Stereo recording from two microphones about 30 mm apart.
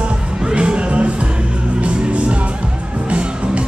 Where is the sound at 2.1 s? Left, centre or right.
Right.